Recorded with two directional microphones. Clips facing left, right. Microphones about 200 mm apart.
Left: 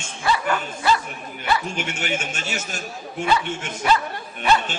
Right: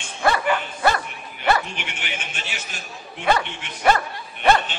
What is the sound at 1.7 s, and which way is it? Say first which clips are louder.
Speech: left 7 dB; 45° left (ahead or behind).